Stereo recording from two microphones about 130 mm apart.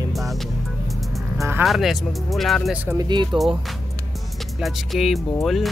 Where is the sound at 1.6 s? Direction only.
Centre (ahead or behind).